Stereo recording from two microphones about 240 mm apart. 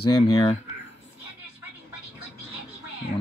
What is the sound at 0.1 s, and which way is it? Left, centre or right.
Speech, left.